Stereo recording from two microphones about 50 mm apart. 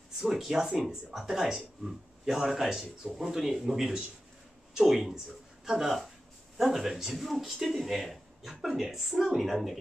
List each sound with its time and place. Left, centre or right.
0.3 s speech: centre